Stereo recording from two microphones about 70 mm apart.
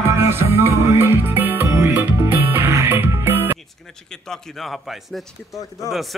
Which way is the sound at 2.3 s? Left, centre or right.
Right.